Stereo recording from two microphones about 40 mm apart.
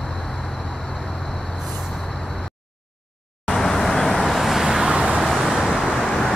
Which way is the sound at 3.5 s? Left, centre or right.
Centre.